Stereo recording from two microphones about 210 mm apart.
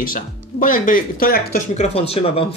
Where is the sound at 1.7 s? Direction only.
30° left (ahead or behind).